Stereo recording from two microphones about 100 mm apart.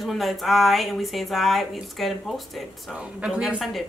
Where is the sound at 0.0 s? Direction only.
Centre (ahead or behind).